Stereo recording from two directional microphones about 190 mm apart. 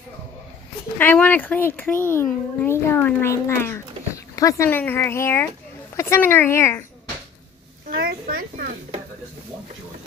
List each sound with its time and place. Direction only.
0.9 s a child's voice: 10° left (ahead or behind)
7.9 s a child's voice: 50° right (ahead or behind)